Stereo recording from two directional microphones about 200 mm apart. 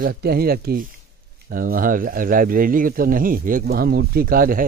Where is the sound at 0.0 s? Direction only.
50° right (ahead or behind).